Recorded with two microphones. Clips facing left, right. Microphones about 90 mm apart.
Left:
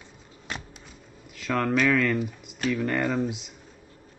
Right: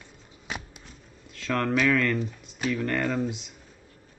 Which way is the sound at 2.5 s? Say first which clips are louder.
Left 1 dB; 5° right (ahead or behind).